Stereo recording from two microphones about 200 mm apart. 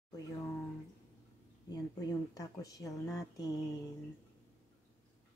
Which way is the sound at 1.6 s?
20° left (ahead or behind).